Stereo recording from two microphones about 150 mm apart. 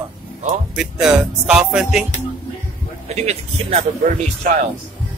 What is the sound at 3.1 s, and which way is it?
Speech, 45° right (ahead or behind).